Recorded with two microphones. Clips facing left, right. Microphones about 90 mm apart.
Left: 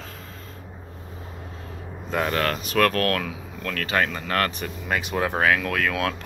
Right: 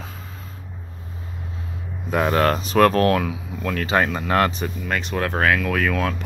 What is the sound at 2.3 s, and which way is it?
Speech, 30° right (ahead or behind).